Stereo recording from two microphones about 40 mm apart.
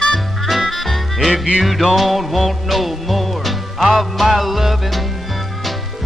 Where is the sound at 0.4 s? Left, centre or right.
Centre.